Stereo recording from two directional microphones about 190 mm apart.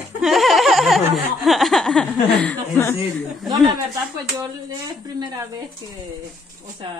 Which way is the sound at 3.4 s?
20° right (ahead or behind).